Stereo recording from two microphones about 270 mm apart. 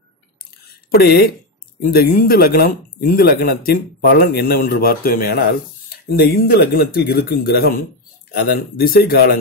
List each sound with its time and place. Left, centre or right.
0.9 s speech: left
8.7 s speech: left